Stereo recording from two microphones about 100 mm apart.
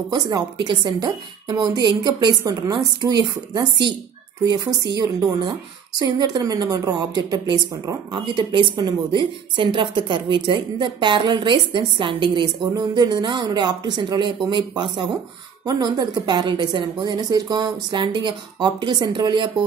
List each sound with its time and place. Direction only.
0.1 s a woman's voice: 45° right (ahead or behind)